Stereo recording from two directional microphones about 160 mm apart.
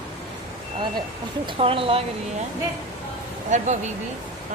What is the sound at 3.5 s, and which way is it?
Speech, 45° right (ahead or behind).